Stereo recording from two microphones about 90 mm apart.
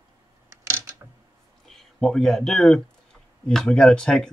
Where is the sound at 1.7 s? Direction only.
5° left (ahead or behind).